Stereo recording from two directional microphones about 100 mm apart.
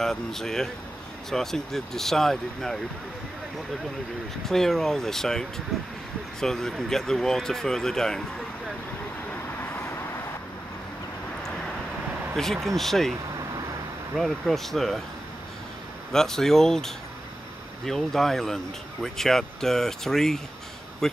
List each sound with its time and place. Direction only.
0.0 s speech: 5° left (ahead or behind)
4.5 s speech: 5° left (ahead or behind)
9.3 s vehicle: 20° left (ahead or behind)
12.6 s speech: centre (ahead or behind)
14.1 s speech: centre (ahead or behind)
16.1 s speech: 5° left (ahead or behind)